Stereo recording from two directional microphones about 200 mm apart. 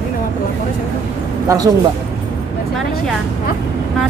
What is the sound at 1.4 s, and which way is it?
Speech, 20° right (ahead or behind).